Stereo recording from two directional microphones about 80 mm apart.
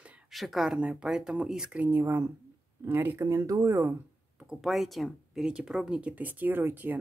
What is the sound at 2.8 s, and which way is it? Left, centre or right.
Speech, right.